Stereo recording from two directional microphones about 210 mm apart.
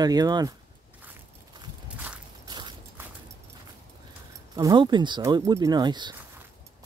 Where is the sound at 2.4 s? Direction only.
20° right (ahead or behind).